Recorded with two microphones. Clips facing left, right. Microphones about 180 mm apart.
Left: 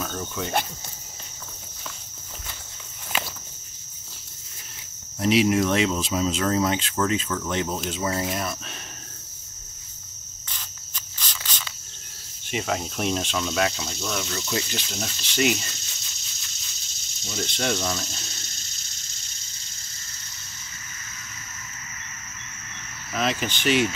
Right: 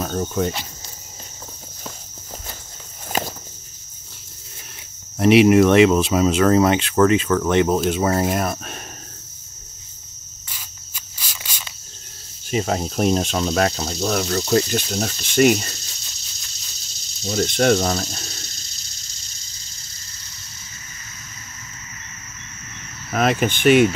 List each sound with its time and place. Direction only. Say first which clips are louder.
0.0 s cricket: right 8 dB; 40° right (ahead or behind)
5.2 s speech: right 8 dB; 65° right (ahead or behind)
11.1 s cricket: even; 10° right (ahead or behind)
12.4 s speech: right 6 dB; 40° right (ahead or behind)
17.2 s speech: right 10 dB; 35° right (ahead or behind)
23.1 s speech: right 7 dB; 55° right (ahead or behind)